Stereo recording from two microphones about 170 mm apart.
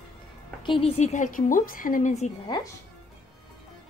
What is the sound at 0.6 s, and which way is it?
Speech, 30° left (ahead or behind).